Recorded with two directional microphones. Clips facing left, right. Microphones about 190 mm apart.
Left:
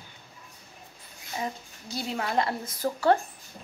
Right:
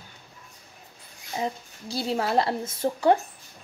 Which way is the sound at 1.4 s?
30° right (ahead or behind).